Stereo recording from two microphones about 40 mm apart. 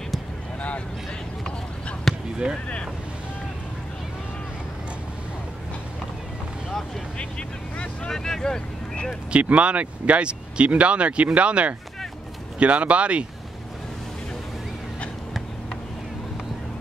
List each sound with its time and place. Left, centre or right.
0.6 s a sound: left
2.1 s basketball bounce: centre
7.2 s vehicle: left
8.1 s vehicle: centre
9.3 s speech: right